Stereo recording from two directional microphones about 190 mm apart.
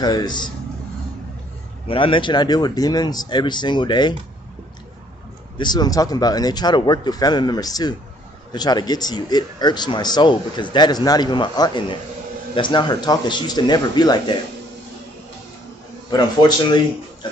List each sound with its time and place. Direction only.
0.0 s speech: 20° left (ahead or behind)
1.9 s speech: 25° left (ahead or behind)
5.6 s speech: 20° left (ahead or behind)
16.1 s a man's voice: 20° left (ahead or behind)